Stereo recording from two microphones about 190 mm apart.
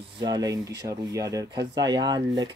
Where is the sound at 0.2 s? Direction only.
20° right (ahead or behind).